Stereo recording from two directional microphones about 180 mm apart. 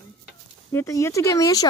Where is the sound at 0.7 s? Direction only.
15° left (ahead or behind).